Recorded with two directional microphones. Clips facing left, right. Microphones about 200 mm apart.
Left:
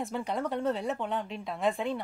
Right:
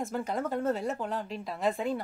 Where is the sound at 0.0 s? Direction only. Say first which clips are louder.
Even; centre (ahead or behind).